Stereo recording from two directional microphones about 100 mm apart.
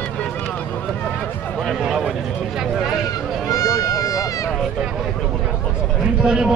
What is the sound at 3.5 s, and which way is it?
Run, 35° left (ahead or behind).